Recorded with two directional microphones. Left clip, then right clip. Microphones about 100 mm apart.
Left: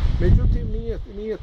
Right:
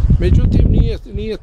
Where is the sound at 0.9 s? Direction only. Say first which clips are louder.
Right 5 dB; 5° right (ahead or behind).